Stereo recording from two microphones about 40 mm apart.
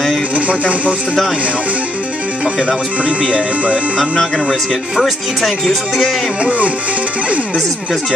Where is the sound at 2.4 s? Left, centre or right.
Right.